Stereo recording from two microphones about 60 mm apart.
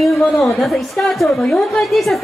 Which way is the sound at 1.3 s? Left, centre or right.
Centre.